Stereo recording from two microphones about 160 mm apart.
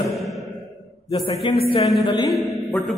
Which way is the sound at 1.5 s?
35° left (ahead or behind).